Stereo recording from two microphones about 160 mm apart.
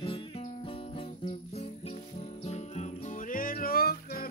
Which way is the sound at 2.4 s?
45° left (ahead or behind).